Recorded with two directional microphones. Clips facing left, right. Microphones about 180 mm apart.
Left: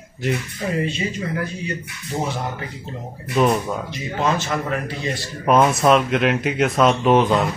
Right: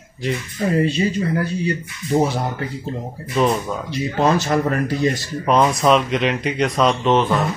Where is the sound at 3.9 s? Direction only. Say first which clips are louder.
Right 6 dB; 35° right (ahead or behind).